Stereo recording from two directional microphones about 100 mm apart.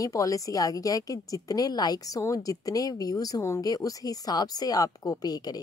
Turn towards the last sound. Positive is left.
turn(degrees=40)  # may be behind; listen again after turning